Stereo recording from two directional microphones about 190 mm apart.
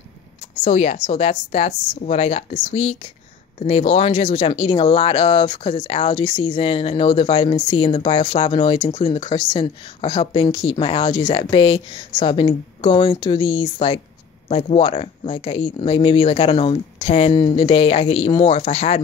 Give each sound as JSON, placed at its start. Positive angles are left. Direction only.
{"t": 0.7, "sound": "speech", "side_deg": 35}